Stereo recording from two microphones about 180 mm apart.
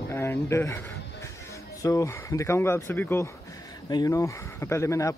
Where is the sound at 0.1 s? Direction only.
15° left (ahead or behind).